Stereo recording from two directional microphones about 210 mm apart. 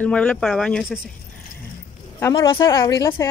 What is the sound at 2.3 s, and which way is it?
Speech, 25° left (ahead or behind).